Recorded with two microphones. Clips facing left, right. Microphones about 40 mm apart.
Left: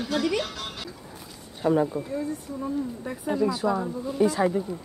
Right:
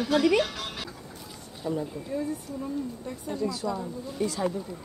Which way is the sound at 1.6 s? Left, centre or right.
Left.